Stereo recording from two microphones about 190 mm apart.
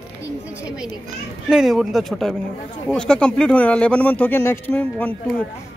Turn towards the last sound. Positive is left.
turn(degrees=10)  # may be behind; listen again after turning